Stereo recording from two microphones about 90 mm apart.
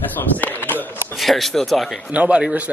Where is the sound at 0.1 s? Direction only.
20° left (ahead or behind).